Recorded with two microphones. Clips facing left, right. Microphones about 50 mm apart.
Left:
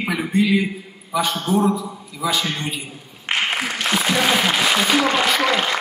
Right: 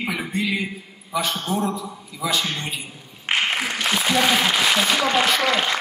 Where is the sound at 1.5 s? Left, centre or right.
Centre.